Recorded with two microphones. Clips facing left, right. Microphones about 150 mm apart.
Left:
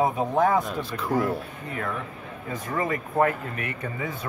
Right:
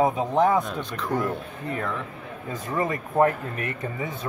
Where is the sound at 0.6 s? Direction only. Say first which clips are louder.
Even; centre (ahead or behind).